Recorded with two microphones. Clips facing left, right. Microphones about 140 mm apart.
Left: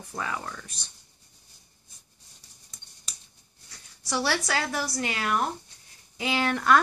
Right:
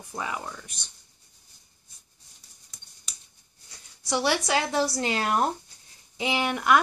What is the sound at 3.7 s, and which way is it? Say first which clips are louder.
Speech: right 3 dB; 20° right (ahead or behind).